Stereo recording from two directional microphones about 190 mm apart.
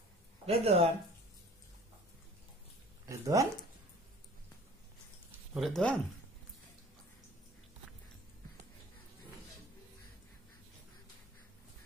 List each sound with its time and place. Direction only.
0.5 s speech: 30° right (ahead or behind)
3.1 s speech: 15° right (ahead or behind)
5.5 s speech: centre (ahead or behind)